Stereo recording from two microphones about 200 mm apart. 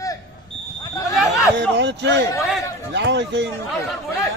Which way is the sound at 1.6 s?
60° right (ahead or behind).